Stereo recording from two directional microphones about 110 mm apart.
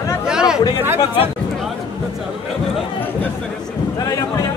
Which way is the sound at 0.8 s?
20° right (ahead or behind).